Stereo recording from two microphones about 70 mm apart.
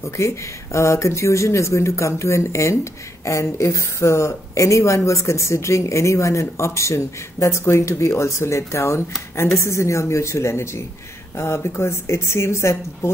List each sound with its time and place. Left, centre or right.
0.0 s speech: left